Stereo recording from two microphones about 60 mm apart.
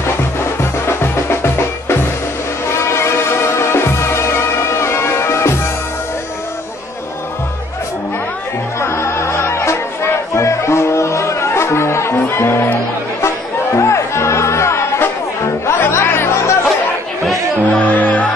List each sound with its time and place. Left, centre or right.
0.6 s music: left
8.7 s music: left
13.7 s music: left
17.6 s music: left